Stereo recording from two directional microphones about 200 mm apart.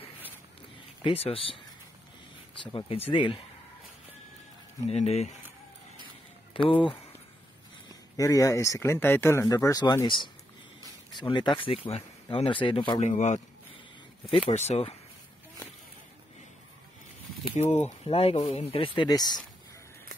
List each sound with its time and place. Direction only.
1.0 s speech: 30° left (ahead or behind)
2.6 s speech: 25° left (ahead or behind)
4.8 s speech: 30° left (ahead or behind)
6.5 s speech: 25° left (ahead or behind)
8.2 s speech: 15° left (ahead or behind)
13.0 s speech: 35° left (ahead or behind)
17.6 s speech: 35° left (ahead or behind)